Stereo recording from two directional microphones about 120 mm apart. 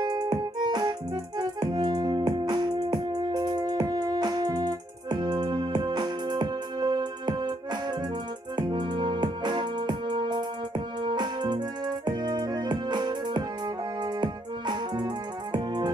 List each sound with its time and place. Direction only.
0.0 s music: 35° right (ahead or behind)